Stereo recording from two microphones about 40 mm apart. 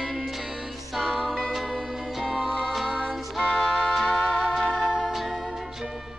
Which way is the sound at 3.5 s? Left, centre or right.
Left.